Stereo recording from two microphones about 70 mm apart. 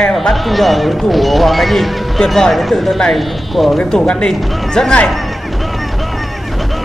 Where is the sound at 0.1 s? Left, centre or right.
Centre.